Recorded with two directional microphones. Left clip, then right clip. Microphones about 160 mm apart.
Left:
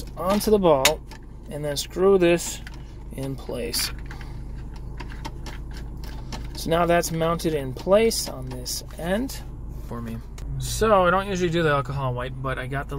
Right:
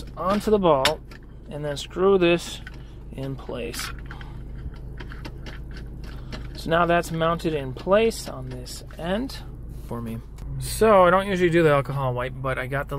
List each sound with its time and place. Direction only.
0.2 s speech: 30° left (ahead or behind)
6.6 s speech: 25° left (ahead or behind)
9.8 s speech: 20° right (ahead or behind)